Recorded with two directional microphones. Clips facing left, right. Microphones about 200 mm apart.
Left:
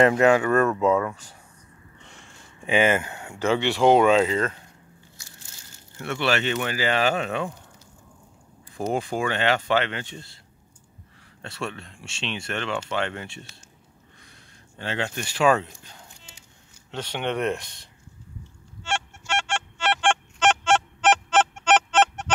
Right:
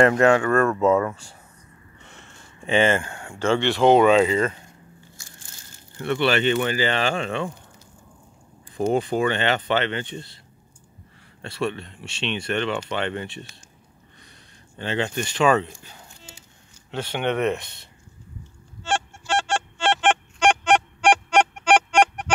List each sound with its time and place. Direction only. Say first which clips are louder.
0.0 s speech: right 1 dB; 5° left (ahead or behind)
2.6 s speech: right 1 dB; 10° left (ahead or behind)
5.2 s a sound: right 2 dB; 50° right (ahead or behind)
5.9 s speech: right 3 dB; centre (ahead or behind)
8.9 s speech: right 3 dB; centre (ahead or behind)
11.4 s speech: right 6 dB; 5° right (ahead or behind)
14.8 s speech: right 4 dB; centre (ahead or behind)
16.9 s speech: right 3 dB; 5° right (ahead or behind)
18.8 s honk: right 4 dB; 35° right (ahead or behind); by 22.3 s 10° right (ahead or behind)